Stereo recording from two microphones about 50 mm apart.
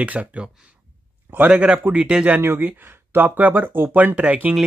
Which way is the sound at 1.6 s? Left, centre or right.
Right.